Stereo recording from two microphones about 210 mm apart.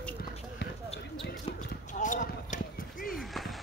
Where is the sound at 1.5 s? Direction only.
35° left (ahead or behind).